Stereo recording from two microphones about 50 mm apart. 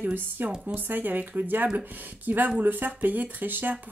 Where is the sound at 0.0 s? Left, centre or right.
Right.